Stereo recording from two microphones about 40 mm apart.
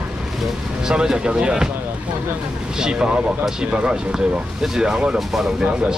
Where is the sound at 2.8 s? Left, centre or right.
Right.